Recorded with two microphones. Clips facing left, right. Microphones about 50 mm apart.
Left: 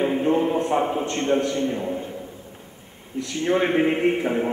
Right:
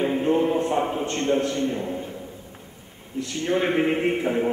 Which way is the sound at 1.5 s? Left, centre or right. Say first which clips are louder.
Left 1 dB; centre.